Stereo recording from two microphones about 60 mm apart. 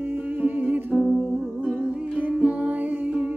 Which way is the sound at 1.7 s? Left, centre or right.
Right.